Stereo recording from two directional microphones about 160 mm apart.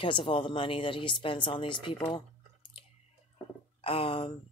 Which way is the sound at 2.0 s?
35° left (ahead or behind).